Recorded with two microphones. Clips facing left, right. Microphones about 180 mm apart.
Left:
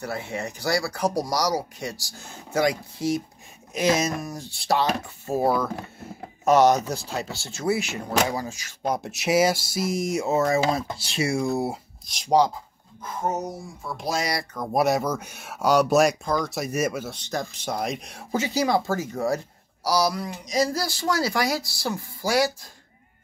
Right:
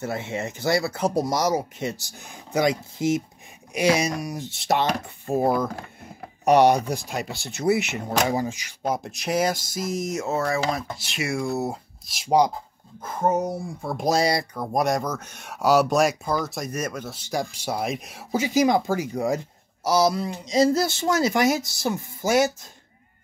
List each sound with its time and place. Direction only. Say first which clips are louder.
0.0 s speech: right 2 dB; 20° right (ahead or behind)
3.7 s speech: right 1 dB; 10° right (ahead or behind)
6.4 s speech: right 1 dB; 15° right (ahead or behind)
8.8 s speech: left 1 dB; centre (ahead or behind); by 11.5 s 25° left (ahead or behind)
11.5 s speech: left 1 dB; 10° left (ahead or behind)
12.1 s speech: even; 5° right (ahead or behind)
13.8 s speech: right 5 dB; 45° right (ahead or behind)
14.7 s speech: left 2 dB; 5° left (ahead or behind)
17.1 s speech: right 2 dB; 10° right (ahead or behind)